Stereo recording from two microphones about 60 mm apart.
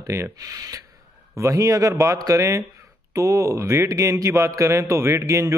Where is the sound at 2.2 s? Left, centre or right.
Right.